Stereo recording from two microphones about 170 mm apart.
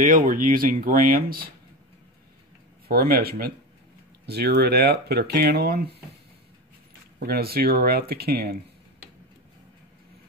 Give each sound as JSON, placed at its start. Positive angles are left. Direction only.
{"t": 0.0, "sound": "speech", "side_deg": -50}
{"t": 2.9, "sound": "speech", "side_deg": -65}
{"t": 7.2, "sound": "speech", "side_deg": -65}